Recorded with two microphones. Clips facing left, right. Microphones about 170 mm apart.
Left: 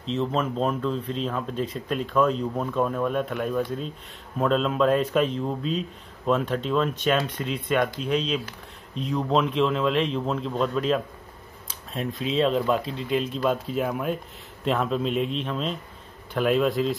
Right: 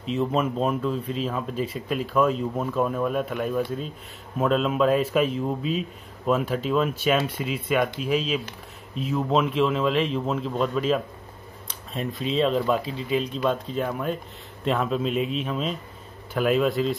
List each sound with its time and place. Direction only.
0.0 s speech: 10° right (ahead or behind)